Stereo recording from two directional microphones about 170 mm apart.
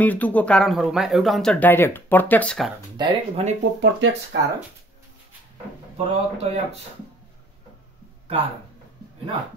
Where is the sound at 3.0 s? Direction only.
40° right (ahead or behind).